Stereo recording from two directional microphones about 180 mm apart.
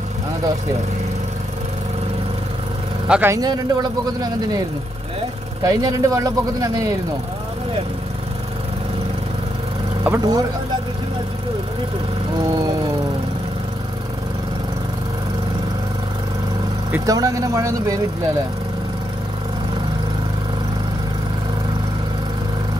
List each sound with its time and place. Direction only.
3.1 s speech: 10° right (ahead or behind)
10.0 s speech: 15° right (ahead or behind)
16.9 s speech: 20° right (ahead or behind)